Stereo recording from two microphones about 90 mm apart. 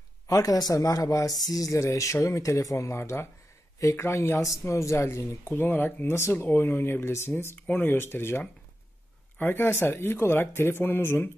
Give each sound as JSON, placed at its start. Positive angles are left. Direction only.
{"t": 0.3, "sound": "speech", "side_deg": 40}